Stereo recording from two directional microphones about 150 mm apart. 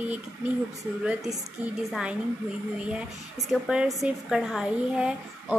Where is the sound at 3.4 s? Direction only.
Centre (ahead or behind).